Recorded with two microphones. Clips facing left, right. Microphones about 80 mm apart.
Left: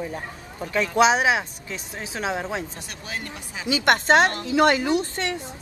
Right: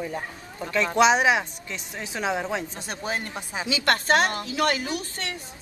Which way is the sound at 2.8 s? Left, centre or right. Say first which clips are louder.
Right 4 dB; right.